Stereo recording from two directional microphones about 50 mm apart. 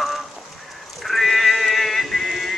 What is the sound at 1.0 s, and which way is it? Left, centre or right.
Music, centre.